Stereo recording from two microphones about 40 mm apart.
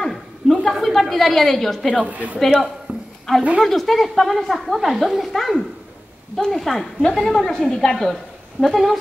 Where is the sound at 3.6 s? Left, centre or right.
Centre.